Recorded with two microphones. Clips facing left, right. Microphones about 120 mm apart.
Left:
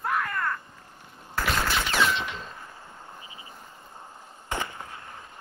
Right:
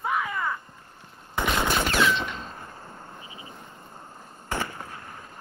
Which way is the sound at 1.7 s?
50° right (ahead or behind).